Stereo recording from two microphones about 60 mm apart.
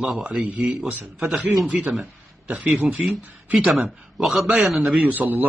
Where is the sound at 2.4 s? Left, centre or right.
Right.